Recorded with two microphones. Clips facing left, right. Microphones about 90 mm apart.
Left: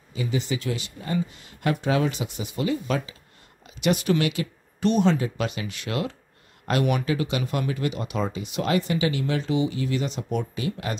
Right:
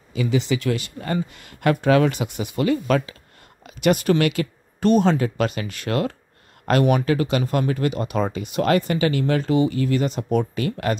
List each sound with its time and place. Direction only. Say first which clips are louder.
0.1 s speech: right 6 dB; 85° right; by 3.2 s 60° right (ahead or behind)
3.6 s speech: right 4 dB; 50° right (ahead or behind)